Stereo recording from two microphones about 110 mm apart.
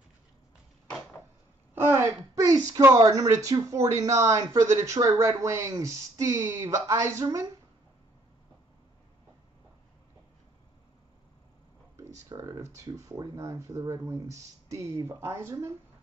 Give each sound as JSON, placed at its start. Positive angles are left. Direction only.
{"t": 1.8, "sound": "a sound", "side_deg": -20}
{"t": 2.8, "sound": "speech", "side_deg": -35}
{"t": 7.2, "sound": "speech", "side_deg": -40}
{"t": 12.0, "sound": "speech", "side_deg": -30}